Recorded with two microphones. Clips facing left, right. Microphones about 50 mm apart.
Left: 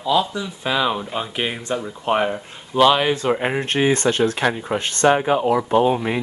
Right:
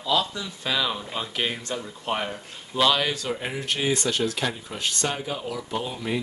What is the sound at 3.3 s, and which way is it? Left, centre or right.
Speech, left.